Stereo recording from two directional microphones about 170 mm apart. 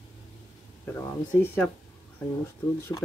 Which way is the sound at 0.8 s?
15° left (ahead or behind).